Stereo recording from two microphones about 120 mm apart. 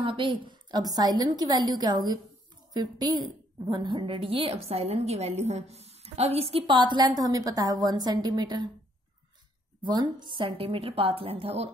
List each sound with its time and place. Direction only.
0.0 s a woman's voice: 45° right (ahead or behind)
2.7 s a woman's voice: 35° right (ahead or behind)
9.8 s a woman's voice: 40° right (ahead or behind)